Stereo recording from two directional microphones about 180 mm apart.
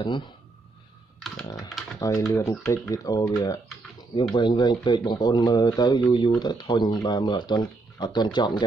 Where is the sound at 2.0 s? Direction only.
15° left (ahead or behind).